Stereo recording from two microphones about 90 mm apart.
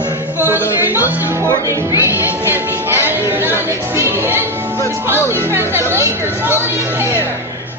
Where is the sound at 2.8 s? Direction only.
25° right (ahead or behind).